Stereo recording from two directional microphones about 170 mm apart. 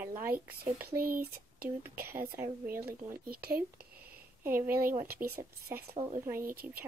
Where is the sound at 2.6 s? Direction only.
60° right (ahead or behind).